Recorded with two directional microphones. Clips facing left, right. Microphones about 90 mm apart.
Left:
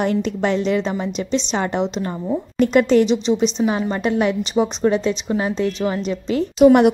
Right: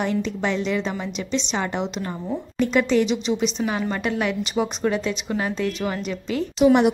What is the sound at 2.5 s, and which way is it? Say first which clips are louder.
Speech: left 5 dB; 50° left (ahead or behind).